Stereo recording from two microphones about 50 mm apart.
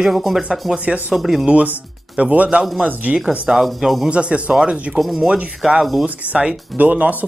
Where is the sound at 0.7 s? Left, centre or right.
Right.